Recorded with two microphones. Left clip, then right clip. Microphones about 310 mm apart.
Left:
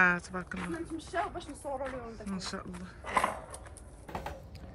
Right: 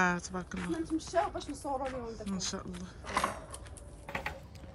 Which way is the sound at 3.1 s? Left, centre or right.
Centre.